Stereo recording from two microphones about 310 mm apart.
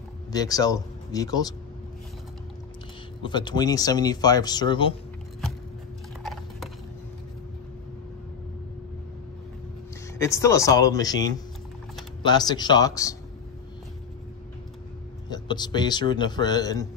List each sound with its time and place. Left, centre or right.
0.3 s speech: centre
3.2 s speech: centre
6.2 s a sound: centre
10.1 s speech: centre
15.2 s speech: centre